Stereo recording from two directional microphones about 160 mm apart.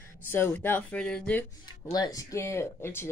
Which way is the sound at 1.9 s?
25° left (ahead or behind).